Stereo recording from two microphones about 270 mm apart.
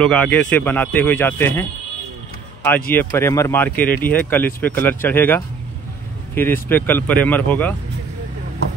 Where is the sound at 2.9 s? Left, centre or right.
Centre.